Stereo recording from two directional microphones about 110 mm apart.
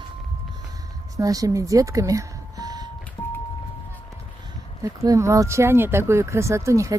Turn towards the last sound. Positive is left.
turn(degrees=-30)  # may be behind; listen again after turning